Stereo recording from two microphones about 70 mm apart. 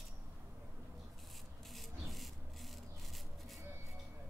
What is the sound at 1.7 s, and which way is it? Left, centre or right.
Rub, centre.